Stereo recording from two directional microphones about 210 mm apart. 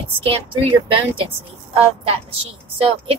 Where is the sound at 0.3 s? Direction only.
25° right (ahead or behind).